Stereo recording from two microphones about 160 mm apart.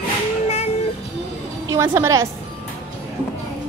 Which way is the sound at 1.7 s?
15° right (ahead or behind).